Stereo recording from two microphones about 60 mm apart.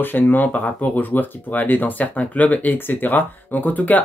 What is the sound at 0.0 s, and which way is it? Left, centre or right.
Speech, left.